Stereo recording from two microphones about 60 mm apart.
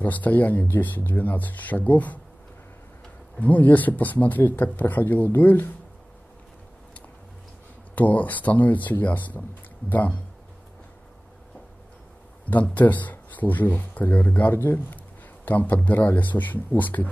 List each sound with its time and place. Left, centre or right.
0.0 s speech: left
3.3 s speech: left
7.9 s speech: left
12.7 s speech: left